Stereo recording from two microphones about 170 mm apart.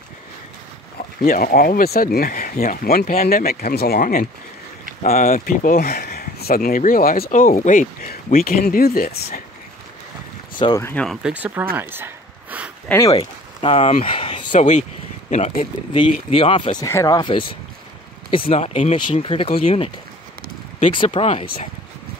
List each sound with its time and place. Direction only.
1.2 s speech: 55° left (ahead or behind)
10.6 s speech: 25° left (ahead or behind)
10.9 s speech: 5° left (ahead or behind)
11.2 s speech: 10° right (ahead or behind)
11.7 s a sound: 10° right (ahead or behind)
12.8 s speech: 15° left (ahead or behind)
13.1 s speech: 35° left (ahead or behind)
14.0 s a sound: 30° left (ahead or behind)
14.5 s speech: 45° left (ahead or behind)
16.7 s speech: 20° left (ahead or behind)
18.5 s speech: 40° left (ahead or behind)
20.9 s speech: 30° left (ahead or behind)